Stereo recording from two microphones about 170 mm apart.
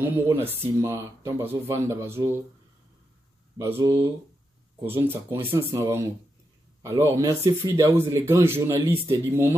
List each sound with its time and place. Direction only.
0.0 s speech: 15° right (ahead or behind)
3.5 s speech: 15° right (ahead or behind)